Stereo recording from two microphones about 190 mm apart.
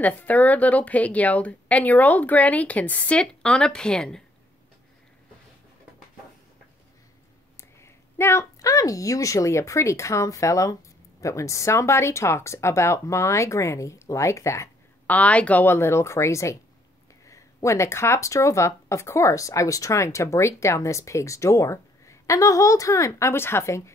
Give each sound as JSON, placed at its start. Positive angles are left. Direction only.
{"t": 0.0, "sound": "speech", "side_deg": 10}
{"t": 7.5, "sound": "speech", "side_deg": 15}